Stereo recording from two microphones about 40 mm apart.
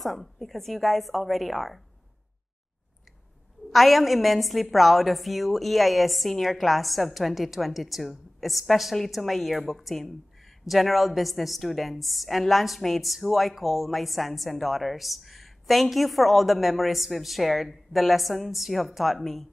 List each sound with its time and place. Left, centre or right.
0.0 s a woman's voice: centre
3.7 s a woman's voice: centre